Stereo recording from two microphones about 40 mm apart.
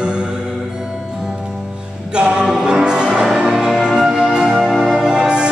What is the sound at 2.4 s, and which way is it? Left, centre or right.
Music, centre.